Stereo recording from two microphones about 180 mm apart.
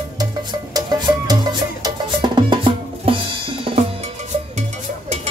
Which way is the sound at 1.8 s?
25° right (ahead or behind).